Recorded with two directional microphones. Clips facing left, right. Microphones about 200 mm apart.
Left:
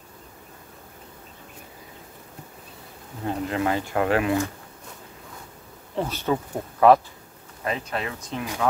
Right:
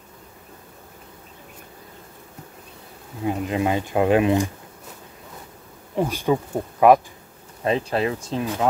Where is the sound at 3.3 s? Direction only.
15° right (ahead or behind).